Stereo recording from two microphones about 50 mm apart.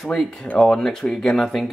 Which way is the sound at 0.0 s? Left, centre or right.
Centre.